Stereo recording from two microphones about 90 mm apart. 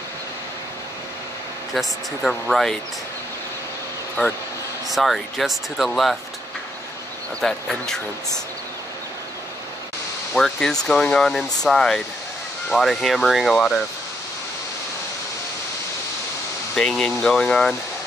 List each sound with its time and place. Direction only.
1.7 s speech: centre (ahead or behind)
4.2 s speech: 15° left (ahead or behind)
4.9 s speech: centre (ahead or behind)
7.3 s speech: 5° left (ahead or behind)
10.3 s speech: 5° left (ahead or behind)
16.7 s speech: 10° left (ahead or behind)